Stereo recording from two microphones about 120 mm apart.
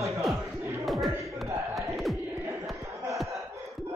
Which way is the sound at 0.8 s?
Centre (ahead or behind).